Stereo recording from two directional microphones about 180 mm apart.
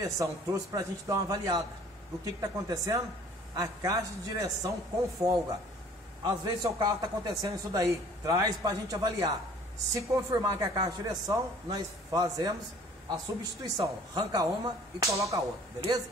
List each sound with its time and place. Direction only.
0.0 s a man's voice: 15° right (ahead or behind)
6.2 s speech: 25° right (ahead or behind)